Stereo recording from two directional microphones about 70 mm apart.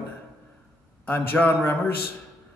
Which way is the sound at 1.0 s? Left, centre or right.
Left.